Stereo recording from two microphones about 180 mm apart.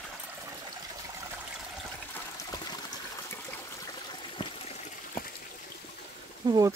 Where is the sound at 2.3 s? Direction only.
20° left (ahead or behind).